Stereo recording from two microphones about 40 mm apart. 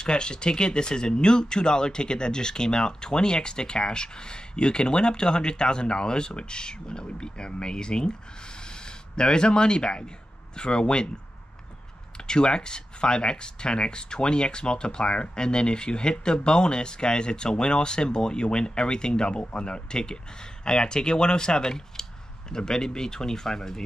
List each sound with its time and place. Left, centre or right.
0.0 s speech: left
12.2 s speech: left